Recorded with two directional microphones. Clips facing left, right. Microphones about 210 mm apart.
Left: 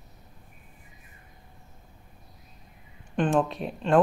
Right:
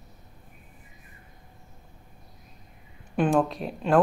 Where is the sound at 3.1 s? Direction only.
5° right (ahead or behind).